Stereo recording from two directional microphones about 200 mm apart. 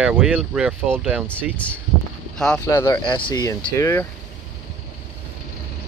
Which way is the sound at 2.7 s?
15° left (ahead or behind).